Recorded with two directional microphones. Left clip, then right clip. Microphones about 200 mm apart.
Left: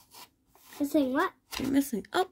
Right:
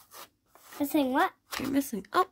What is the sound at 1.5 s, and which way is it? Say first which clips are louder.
Speech: left 4 dB; 10° right (ahead or behind).